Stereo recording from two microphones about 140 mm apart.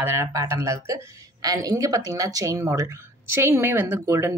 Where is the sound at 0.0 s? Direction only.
20° right (ahead or behind).